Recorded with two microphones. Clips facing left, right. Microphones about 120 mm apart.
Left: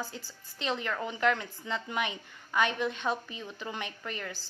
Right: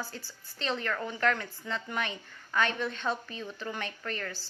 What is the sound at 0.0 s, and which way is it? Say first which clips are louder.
A woman's voice: left 1 dB; 15° left (ahead or behind).